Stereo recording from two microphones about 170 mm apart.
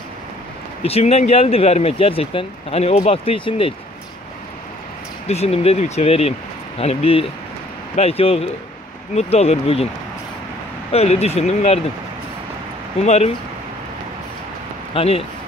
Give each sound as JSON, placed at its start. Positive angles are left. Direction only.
{"t": 0.8, "sound": "speech", "side_deg": 35}
{"t": 5.3, "sound": "speech", "side_deg": 35}
{"t": 10.9, "sound": "speech", "side_deg": 40}
{"t": 13.0, "sound": "speech", "side_deg": 40}
{"t": 15.0, "sound": "speech", "side_deg": 35}